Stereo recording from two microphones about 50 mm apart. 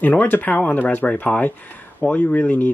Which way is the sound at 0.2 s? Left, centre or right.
Left.